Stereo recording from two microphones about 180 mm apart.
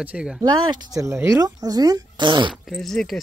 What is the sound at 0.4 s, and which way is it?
Speech, 20° right (ahead or behind).